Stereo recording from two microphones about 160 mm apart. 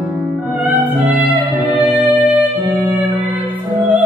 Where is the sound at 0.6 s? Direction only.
10° right (ahead or behind).